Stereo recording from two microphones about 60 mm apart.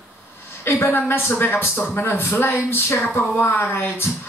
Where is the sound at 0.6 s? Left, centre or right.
Left.